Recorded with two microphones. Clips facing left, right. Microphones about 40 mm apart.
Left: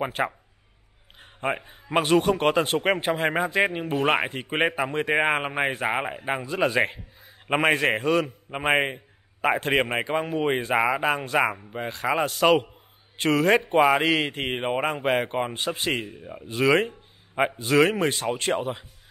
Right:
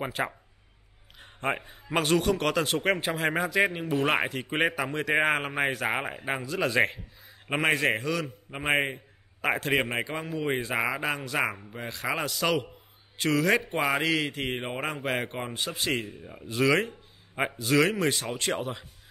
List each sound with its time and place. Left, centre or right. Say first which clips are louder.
0.2 s a man's voice: left 3 dB; left
1.6 s speech: left 4 dB; centre
5.9 s speech: left 3 dB; centre; by 8.9 s left
8.9 s a sound: left 2 dB; centre
9.6 s speech: left 3 dB; left
10.0 s a man's voice: left 6 dB; left
15.5 s speech: left 3 dB; left
16.1 s speech: left 4 dB; centre
17.6 s speech: left 3 dB; centre